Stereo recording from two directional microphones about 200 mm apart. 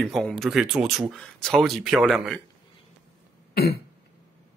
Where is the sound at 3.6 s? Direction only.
50° left (ahead or behind).